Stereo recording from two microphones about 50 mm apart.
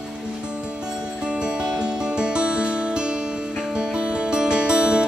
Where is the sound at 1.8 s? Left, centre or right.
Centre.